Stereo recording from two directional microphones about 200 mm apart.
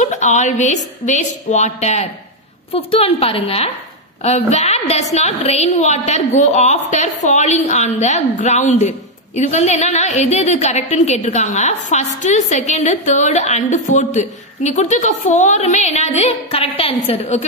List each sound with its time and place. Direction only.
0.0 s a woman's voice: 35° left (ahead or behind)